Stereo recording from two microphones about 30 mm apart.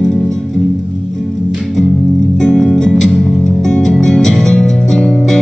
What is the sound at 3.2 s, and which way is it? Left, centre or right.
Music, centre.